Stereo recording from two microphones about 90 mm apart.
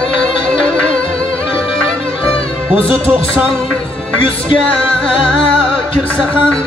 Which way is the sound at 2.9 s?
15° right (ahead or behind).